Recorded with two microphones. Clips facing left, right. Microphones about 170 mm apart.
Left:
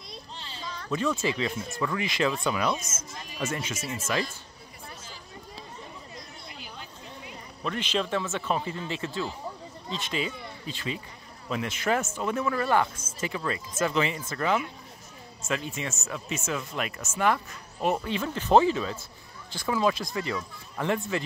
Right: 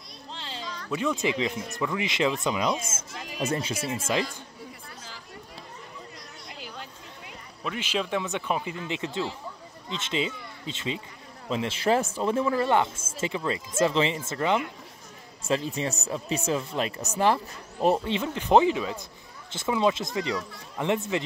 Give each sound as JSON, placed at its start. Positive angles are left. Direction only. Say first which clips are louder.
{"t": 0.3, "sound": "a sound", "louder": "right 7 dB", "side_deg": -90}
{"t": 0.9, "sound": "speech", "louder": "right 1 dB", "side_deg": -15}
{"t": 7.6, "sound": "speech", "louder": "left 1 dB", "side_deg": -5}